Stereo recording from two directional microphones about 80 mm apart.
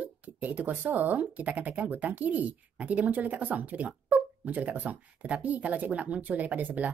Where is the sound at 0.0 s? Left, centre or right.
Centre.